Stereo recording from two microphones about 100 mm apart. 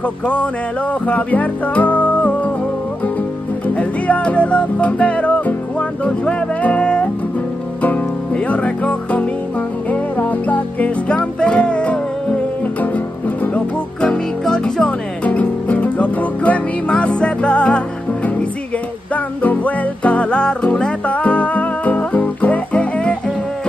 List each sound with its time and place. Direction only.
1.0 s music: 15° left (ahead or behind)
3.6 s music: 15° left (ahead or behind)